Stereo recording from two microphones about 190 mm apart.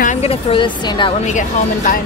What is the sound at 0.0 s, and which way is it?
A woman's voice, 35° left (ahead or behind).